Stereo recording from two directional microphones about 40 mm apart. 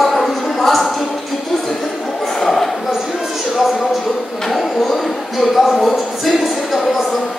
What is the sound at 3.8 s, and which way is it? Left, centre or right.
Speech, centre.